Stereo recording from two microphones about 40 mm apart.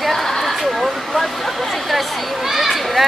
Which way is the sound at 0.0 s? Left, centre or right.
Centre.